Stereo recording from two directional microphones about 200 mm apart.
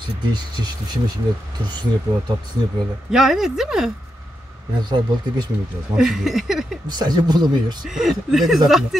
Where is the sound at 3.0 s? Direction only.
Centre (ahead or behind).